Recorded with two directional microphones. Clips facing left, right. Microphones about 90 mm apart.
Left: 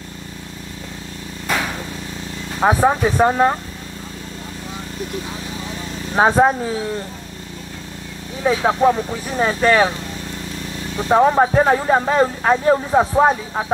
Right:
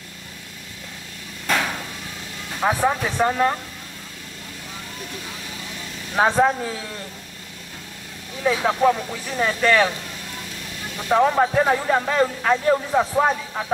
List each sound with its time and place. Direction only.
1.5 s a sound: 5° left (ahead or behind)
2.6 s speech: 30° left (ahead or behind)
6.1 s speech: 30° left (ahead or behind)
8.5 s speech: 30° left (ahead or behind)